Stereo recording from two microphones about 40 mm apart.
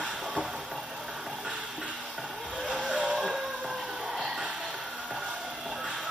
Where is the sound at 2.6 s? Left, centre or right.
Right.